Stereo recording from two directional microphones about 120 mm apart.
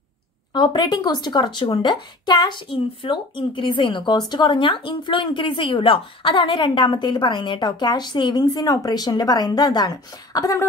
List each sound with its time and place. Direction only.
0.5 s speech: 40° left (ahead or behind)